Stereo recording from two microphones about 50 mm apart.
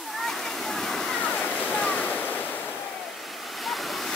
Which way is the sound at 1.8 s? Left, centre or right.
Left.